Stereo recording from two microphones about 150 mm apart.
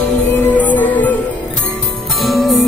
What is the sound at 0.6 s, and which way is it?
Music, 10° left (ahead or behind).